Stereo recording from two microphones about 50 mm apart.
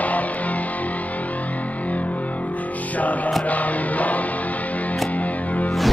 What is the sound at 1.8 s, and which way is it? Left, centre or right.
Music, left.